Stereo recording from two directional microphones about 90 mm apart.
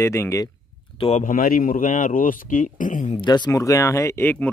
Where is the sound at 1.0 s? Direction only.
90° left.